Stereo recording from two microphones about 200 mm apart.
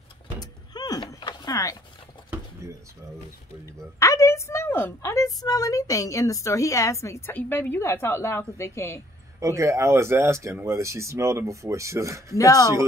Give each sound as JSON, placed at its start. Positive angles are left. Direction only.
{"t": 0.4, "sound": "a sound", "side_deg": 20}
{"t": 4.0, "sound": "a woman's voice", "side_deg": 15}
{"t": 9.4, "sound": "speech", "side_deg": -15}
{"t": 12.4, "sound": "a woman's voice", "side_deg": 15}